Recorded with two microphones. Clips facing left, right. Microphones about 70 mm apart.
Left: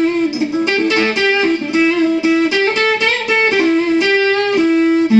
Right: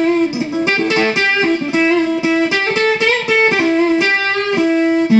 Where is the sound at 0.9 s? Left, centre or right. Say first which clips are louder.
Left 1 dB; centre.